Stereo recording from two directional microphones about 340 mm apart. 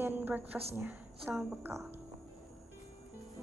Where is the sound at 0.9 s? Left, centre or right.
Centre.